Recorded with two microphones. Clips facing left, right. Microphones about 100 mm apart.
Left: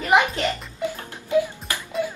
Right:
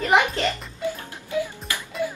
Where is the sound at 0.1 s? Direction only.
15° left (ahead or behind).